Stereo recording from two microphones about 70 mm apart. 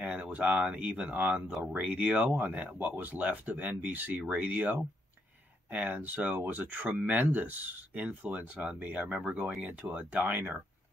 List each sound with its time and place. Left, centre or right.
0.0 s speech: centre